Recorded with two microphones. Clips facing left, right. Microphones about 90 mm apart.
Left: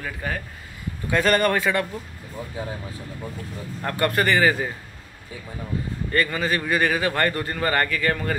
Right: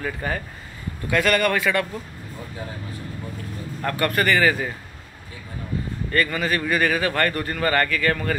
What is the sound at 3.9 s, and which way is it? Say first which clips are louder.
Speech: even; 25° left (ahead or behind).